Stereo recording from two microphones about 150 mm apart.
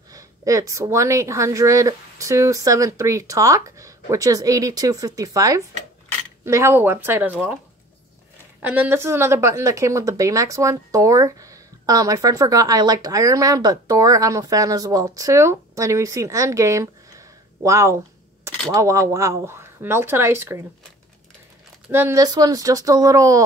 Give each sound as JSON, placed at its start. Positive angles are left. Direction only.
{"t": 0.1, "sound": "a woman's voice", "side_deg": -20}
{"t": 8.6, "sound": "a woman's voice", "side_deg": -10}
{"t": 17.6, "sound": "a sound", "side_deg": -20}
{"t": 18.7, "sound": "speech", "side_deg": -20}
{"t": 21.9, "sound": "a woman's voice", "side_deg": -20}